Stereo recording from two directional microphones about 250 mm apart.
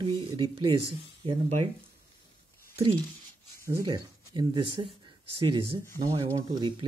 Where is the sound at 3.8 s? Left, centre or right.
Centre.